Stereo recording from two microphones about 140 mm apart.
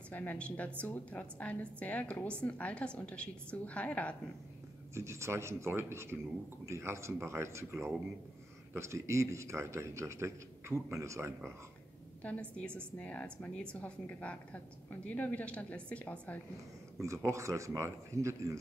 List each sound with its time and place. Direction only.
0.1 s a woman's voice: 10° left (ahead or behind)
4.9 s a man's voice: 20° right (ahead or behind)
12.2 s a woman's voice: 10° left (ahead or behind)
17.0 s a man's voice: 20° right (ahead or behind)